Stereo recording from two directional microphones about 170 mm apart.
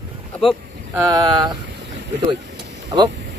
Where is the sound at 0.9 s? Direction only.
25° right (ahead or behind).